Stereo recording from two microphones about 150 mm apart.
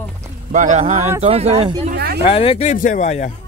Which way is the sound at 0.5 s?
55° right (ahead or behind).